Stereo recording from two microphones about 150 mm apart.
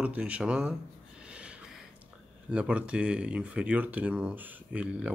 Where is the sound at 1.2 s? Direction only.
5° right (ahead or behind).